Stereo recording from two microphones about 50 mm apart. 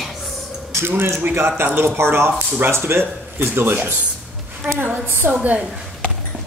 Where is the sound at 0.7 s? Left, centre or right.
Right.